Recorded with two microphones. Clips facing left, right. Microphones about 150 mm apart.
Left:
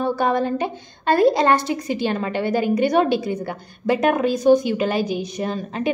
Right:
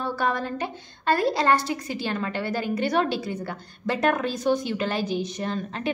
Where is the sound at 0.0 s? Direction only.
20° left (ahead or behind).